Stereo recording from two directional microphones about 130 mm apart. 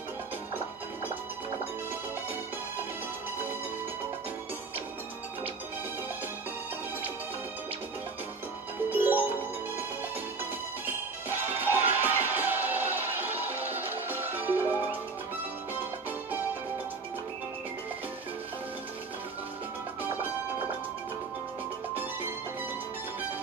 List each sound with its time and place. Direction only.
8.9 s music: 15° right (ahead or behind)
11.2 s music: 15° right (ahead or behind)